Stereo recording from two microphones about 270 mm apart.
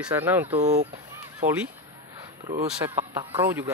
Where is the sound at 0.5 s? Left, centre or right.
Right.